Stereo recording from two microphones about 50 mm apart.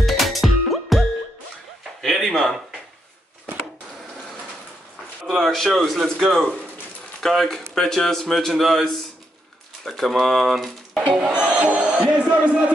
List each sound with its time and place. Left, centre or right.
0.0 s music: centre
2.0 s a sound: centre
5.2 s speech: centre
11.1 s music: centre